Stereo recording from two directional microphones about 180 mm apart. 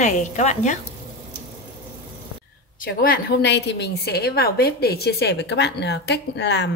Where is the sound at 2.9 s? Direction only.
60° left (ahead or behind).